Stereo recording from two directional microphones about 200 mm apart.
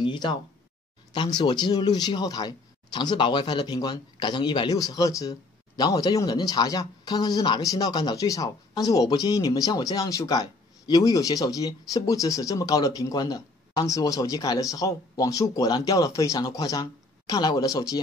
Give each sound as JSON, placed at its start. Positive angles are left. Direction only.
{"t": 0.0, "sound": "speech", "side_deg": 25}